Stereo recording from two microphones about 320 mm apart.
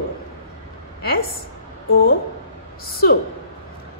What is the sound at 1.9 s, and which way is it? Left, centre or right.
Speech, left.